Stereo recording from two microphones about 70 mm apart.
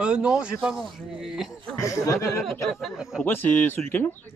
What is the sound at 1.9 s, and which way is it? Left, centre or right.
Speech, left.